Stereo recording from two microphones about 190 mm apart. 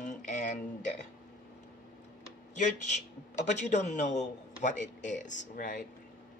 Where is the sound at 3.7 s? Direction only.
40° left (ahead or behind).